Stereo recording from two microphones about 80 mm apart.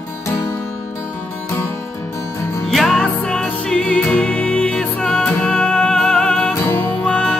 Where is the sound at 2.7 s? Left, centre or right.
Centre.